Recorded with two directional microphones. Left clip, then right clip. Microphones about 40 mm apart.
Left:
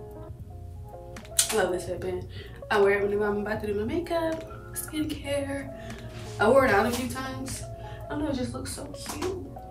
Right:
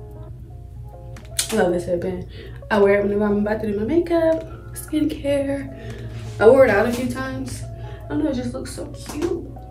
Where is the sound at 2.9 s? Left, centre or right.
Right.